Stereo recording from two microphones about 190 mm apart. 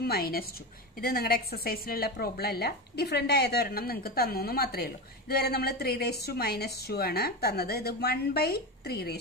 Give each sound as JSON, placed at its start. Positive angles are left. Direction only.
{"t": 0.0, "sound": "a woman's voice", "side_deg": 55}